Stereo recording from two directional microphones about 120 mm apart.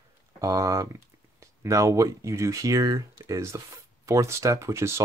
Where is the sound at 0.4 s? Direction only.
30° right (ahead or behind).